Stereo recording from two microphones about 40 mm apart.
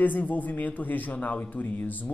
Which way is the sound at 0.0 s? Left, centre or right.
Left.